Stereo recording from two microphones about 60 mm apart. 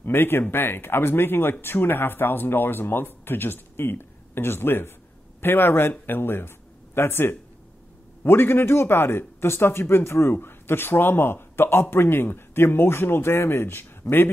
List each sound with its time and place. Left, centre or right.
0.0 s a man's voice: left